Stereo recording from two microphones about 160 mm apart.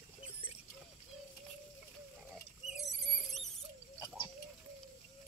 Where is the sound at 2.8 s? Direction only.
Centre (ahead or behind).